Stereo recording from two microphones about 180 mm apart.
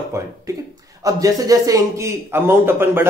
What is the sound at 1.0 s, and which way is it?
Speech, 20° right (ahead or behind).